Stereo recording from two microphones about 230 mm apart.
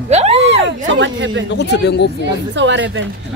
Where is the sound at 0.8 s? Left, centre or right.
Right.